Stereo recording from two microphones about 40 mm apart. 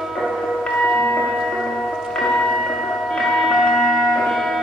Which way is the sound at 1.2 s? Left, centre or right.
Centre.